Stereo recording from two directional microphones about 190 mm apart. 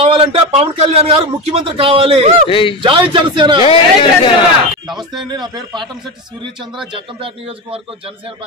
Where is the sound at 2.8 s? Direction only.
25° right (ahead or behind).